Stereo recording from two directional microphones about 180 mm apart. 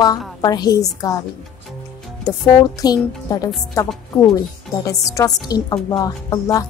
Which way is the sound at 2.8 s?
20° left (ahead or behind).